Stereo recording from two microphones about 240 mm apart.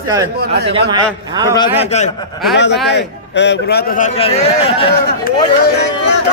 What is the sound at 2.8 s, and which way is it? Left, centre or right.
A man's voice, left.